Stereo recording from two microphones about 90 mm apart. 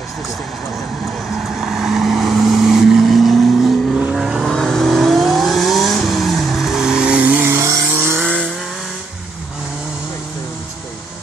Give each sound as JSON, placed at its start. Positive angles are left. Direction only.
{"t": 1.4, "sound": "vehicle", "side_deg": -5}